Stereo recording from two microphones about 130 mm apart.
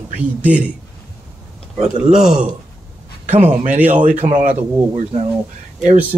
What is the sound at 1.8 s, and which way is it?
Speech, 65° right (ahead or behind).